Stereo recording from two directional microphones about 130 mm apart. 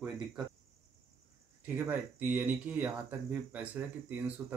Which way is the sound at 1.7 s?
15° right (ahead or behind).